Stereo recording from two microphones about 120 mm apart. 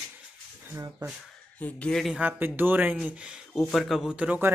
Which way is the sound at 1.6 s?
5° left (ahead or behind).